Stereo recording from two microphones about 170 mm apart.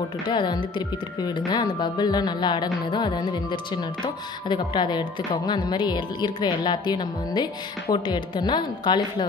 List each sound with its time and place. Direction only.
0.3 s speech: 25° left (ahead or behind)